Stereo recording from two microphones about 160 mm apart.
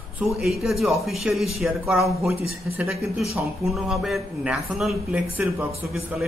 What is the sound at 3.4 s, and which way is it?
A man's voice, centre (ahead or behind).